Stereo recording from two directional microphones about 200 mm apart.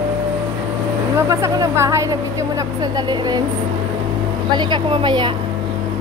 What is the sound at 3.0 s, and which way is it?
Speech, 20° right (ahead or behind).